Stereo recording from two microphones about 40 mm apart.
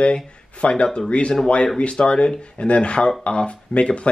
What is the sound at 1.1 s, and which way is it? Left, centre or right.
Speech, left.